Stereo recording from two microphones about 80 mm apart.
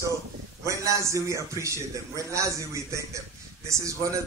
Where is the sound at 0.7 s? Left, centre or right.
Right.